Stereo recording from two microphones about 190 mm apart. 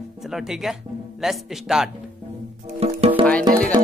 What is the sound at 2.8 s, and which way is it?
Music, 30° right (ahead or behind).